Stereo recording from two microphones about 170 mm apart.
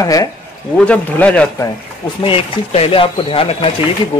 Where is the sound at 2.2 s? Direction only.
35° left (ahead or behind).